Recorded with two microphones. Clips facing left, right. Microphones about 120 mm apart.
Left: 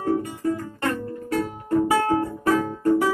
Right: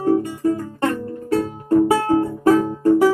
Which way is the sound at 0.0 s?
25° right (ahead or behind).